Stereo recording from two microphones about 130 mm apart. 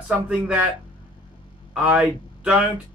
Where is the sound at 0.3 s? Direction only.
5° right (ahead or behind).